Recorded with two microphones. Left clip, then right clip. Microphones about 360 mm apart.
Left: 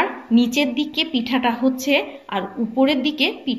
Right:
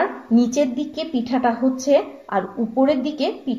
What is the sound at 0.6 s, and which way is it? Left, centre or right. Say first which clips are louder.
A woman's voice: left 1 dB; right.